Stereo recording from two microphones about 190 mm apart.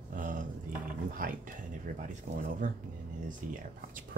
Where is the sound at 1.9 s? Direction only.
45° right (ahead or behind).